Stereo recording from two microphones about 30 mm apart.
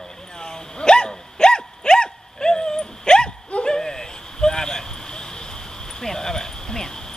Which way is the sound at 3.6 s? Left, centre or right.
Left.